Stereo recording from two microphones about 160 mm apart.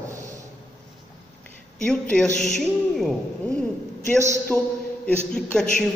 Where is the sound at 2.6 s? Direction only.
Centre (ahead or behind).